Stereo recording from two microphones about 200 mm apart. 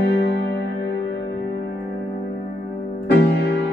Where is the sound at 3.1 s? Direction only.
55° left (ahead or behind).